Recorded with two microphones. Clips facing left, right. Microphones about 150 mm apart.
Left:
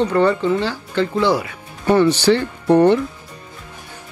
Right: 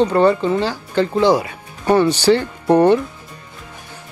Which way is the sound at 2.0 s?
15° right (ahead or behind).